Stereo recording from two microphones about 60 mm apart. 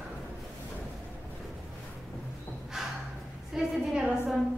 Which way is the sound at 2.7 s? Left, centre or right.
Centre.